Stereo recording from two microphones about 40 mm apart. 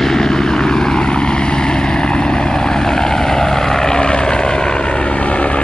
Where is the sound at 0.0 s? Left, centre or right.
Centre.